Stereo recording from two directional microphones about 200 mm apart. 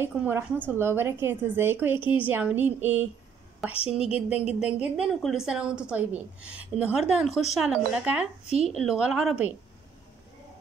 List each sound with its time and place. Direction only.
0.0 s a woman's voice: 10° right (ahead or behind)
3.7 s a woman's voice: 30° left (ahead or behind)
4.5 s a woman's voice: 5° right (ahead or behind)